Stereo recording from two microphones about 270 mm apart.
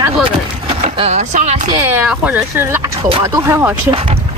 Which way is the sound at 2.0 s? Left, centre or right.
Centre.